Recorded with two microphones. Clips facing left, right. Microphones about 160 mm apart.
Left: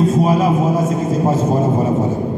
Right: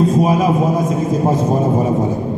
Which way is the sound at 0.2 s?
15° right (ahead or behind).